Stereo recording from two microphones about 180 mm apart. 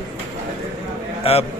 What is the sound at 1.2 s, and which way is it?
Speech, 35° left (ahead or behind).